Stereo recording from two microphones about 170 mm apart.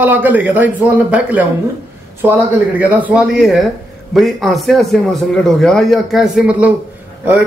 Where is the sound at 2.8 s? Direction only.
10° right (ahead or behind).